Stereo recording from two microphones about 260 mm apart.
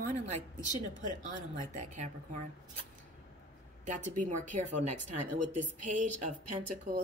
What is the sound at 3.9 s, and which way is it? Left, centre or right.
Speech, right.